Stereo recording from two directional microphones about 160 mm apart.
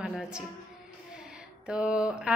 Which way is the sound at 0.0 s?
5° right (ahead or behind).